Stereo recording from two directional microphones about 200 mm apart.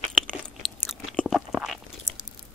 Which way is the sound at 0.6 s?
Centre (ahead or behind).